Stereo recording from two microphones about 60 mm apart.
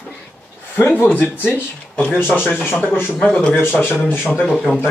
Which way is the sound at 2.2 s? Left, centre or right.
Left.